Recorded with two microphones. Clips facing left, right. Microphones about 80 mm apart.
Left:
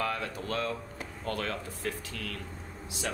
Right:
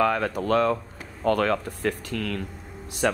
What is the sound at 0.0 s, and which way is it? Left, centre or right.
Speech, right.